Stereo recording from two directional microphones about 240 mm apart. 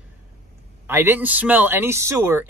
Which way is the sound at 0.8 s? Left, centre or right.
Centre.